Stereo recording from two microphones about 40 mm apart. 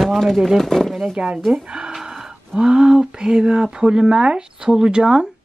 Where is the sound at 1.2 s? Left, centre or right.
Right.